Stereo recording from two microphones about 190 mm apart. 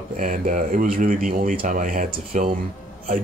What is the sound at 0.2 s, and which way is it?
Speech, 45° right (ahead or behind).